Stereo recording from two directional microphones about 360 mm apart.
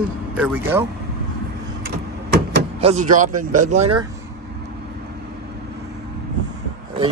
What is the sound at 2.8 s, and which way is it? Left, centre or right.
A man's voice, centre.